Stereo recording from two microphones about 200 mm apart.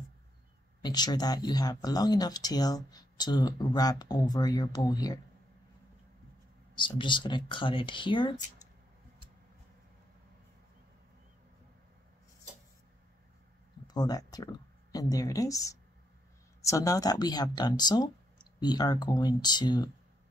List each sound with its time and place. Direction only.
0.8 s speech: 20° left (ahead or behind)
6.7 s speech: 25° left (ahead or behind)
13.8 s speech: 20° left (ahead or behind)